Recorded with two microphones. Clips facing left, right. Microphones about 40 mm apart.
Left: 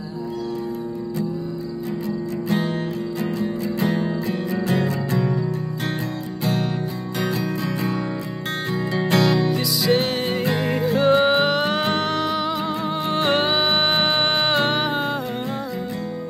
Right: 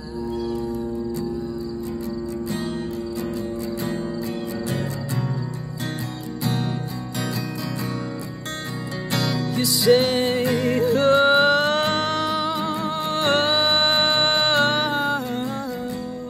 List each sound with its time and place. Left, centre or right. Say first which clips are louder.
2.0 s music: left 3 dB; left
9.6 s music: right 3 dB; centre
10.4 s music: right 1 dB; left
11.2 s music: right 2 dB; centre
12.8 s music: left 2 dB; centre